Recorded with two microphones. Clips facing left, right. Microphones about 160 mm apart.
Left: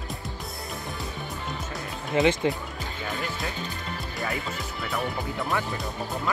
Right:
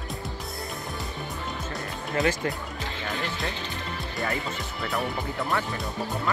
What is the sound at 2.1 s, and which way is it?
Speech, 20° left (ahead or behind).